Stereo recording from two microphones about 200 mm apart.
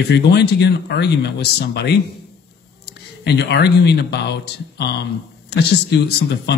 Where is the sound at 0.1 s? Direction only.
55° left (ahead or behind).